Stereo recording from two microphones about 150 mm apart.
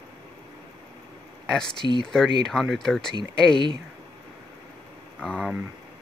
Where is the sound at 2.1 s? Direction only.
5° left (ahead or behind).